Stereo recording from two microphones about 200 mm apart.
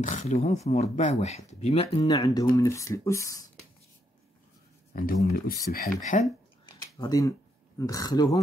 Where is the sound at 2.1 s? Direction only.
20° left (ahead or behind).